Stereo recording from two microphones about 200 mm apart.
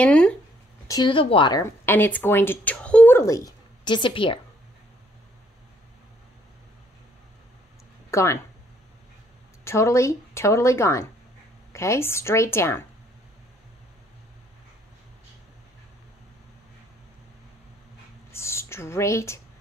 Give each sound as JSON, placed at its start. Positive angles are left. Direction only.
{"t": 0.0, "sound": "speech", "side_deg": 5}
{"t": 0.8, "sound": "speech", "side_deg": 20}
{"t": 8.1, "sound": "speech", "side_deg": 15}
{"t": 9.7, "sound": "a woman's voice", "side_deg": 15}
{"t": 18.3, "sound": "a sound", "side_deg": 15}